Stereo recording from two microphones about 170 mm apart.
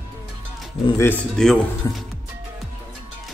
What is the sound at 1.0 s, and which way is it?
Speech, 10° left (ahead or behind).